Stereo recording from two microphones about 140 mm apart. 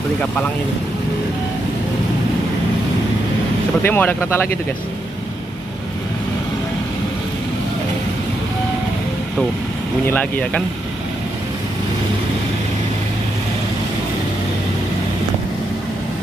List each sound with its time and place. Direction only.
3.8 s speech: 15° left (ahead or behind)
10.0 s speech: 10° left (ahead or behind)